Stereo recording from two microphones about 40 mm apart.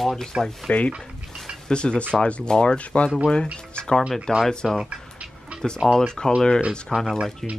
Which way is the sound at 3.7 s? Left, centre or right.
Left.